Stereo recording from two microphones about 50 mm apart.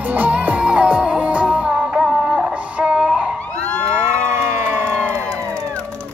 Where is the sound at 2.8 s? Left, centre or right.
Centre.